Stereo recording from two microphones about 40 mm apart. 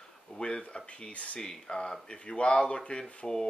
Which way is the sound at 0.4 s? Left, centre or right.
Left.